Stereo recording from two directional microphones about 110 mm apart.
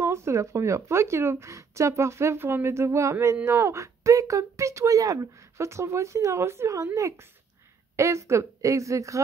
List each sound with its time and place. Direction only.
0.0 s speech: 25° right (ahead or behind)